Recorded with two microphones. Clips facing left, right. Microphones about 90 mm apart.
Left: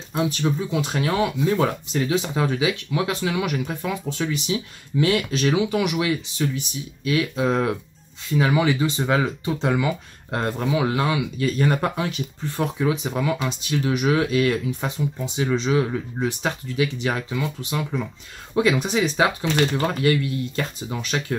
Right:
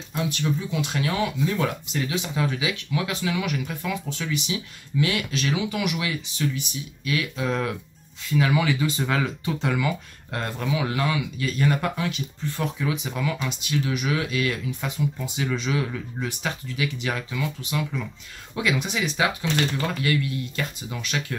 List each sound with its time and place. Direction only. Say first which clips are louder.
0.7 s speech: left 3 dB; 40° left (ahead or behind)